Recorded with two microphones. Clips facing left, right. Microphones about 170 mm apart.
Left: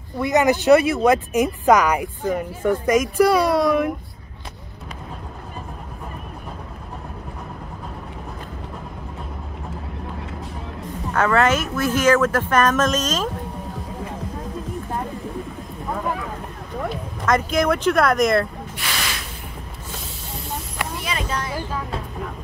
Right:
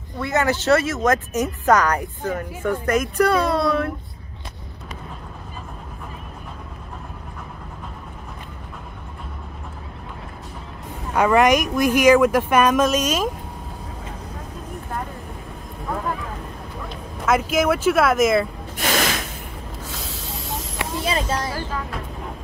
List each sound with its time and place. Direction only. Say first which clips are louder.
0.2 s speech: left 4 dB; 15° left (ahead or behind)
11.1 s speech: right 2 dB; 15° right (ahead or behind)
17.3 s speech: even; 5° right (ahead or behind)
18.8 s spray: right 8 dB; 45° right (ahead or behind)
21.0 s a sound: right 5 dB; 35° right (ahead or behind)